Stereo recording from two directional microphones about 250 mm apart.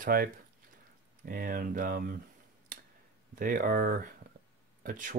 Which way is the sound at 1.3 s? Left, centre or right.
Right.